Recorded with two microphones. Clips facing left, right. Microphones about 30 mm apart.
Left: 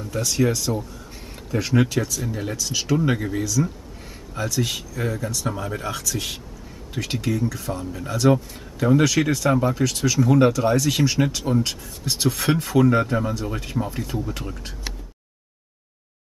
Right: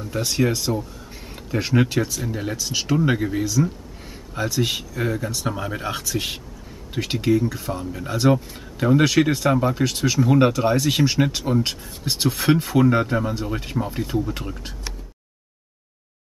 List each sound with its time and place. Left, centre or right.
0.2 s speech: right
2.2 s speech: centre
3.4 s speech: right